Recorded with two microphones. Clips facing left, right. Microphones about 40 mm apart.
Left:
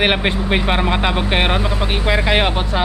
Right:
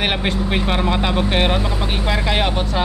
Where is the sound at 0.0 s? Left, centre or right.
Left.